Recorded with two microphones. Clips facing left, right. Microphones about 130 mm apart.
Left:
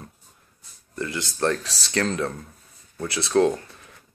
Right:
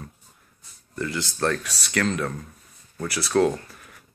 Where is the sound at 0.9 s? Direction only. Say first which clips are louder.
Right 1 dB; 20° left (ahead or behind).